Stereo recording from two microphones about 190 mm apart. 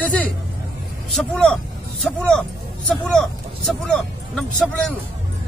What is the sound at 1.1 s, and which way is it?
Speech, centre (ahead or behind).